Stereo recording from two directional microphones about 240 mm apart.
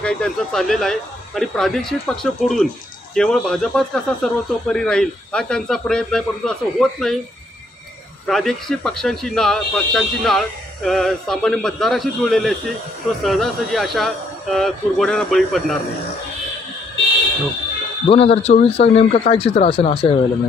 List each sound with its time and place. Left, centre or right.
0.0 s speech: centre
8.3 s speech: centre
18.0 s speech: left